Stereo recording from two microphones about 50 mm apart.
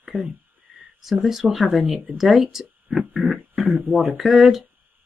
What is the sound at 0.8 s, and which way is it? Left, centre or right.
Speech, centre.